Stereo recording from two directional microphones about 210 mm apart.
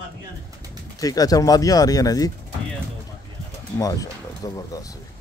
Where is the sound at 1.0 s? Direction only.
15° left (ahead or behind).